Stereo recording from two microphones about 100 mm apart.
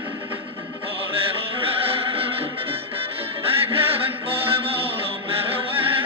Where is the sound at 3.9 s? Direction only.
70° right (ahead or behind).